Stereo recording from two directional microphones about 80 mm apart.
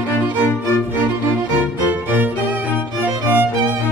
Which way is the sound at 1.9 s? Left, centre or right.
Right.